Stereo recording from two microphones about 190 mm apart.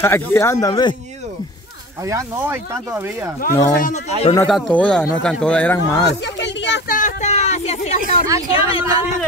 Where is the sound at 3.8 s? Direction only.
40° left (ahead or behind).